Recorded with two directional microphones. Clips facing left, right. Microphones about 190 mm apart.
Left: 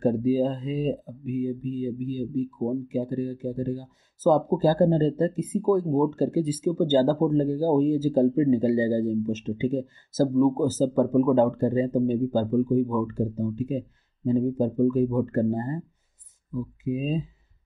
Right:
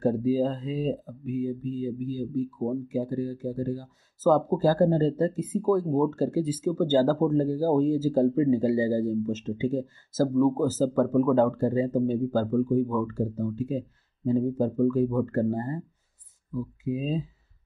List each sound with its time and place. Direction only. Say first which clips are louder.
0.0 s speech: left 2 dB; 20° left (ahead or behind)
16.8 s speech: left 2 dB; 20° left (ahead or behind)